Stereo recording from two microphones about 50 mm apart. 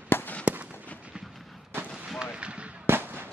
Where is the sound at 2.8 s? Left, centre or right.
Right.